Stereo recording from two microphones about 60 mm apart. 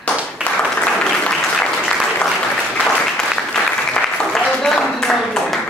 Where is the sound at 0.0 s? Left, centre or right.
Left.